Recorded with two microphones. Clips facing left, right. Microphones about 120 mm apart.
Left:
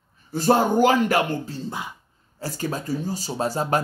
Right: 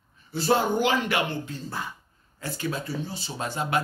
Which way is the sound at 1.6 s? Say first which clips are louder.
Left 2 dB; 15° left (ahead or behind).